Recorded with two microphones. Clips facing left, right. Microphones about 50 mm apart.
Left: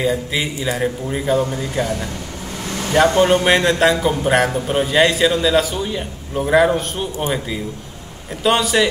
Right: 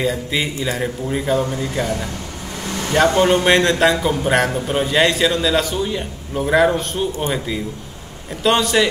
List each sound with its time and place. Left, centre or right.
0.0 s a man's voice: centre